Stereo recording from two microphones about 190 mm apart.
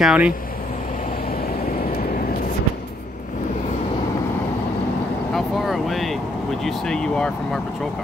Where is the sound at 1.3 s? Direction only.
50° left (ahead or behind).